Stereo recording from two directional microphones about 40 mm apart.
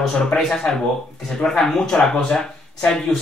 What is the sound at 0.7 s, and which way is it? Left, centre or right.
Speech, left.